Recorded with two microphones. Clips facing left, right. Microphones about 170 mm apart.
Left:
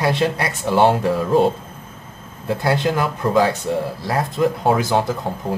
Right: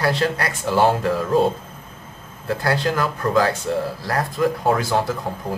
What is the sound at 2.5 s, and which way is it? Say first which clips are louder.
Speech: left 2 dB; 20° left (ahead or behind).